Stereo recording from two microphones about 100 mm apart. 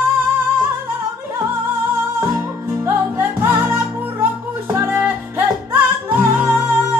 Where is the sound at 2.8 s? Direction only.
30° right (ahead or behind).